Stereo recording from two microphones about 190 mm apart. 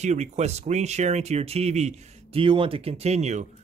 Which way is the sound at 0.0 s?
35° right (ahead or behind).